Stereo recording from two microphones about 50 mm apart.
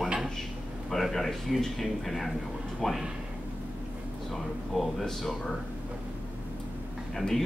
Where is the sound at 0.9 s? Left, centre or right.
Centre.